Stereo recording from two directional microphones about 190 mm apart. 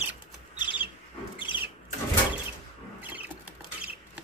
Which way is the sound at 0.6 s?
25° left (ahead or behind).